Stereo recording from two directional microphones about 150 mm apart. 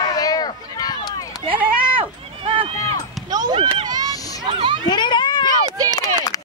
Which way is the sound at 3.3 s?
30° right (ahead or behind).